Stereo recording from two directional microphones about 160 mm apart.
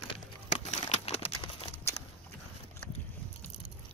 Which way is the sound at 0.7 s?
45° left (ahead or behind).